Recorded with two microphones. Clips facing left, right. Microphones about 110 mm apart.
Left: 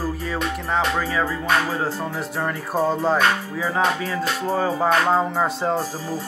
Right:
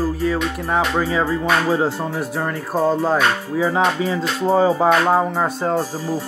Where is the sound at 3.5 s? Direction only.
15° right (ahead or behind).